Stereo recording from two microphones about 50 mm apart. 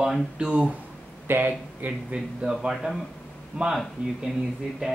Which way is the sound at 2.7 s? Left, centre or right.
Centre.